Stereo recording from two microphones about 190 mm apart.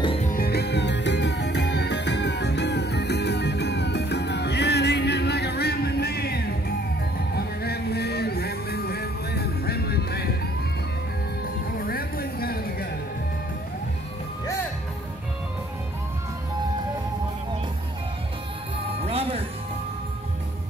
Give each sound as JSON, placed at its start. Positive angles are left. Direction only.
{"t": 0.0, "sound": "music", "side_deg": 30}
{"t": 0.3, "sound": "music", "side_deg": 55}
{"t": 11.7, "sound": "music", "side_deg": 50}
{"t": 19.0, "sound": "music", "side_deg": -30}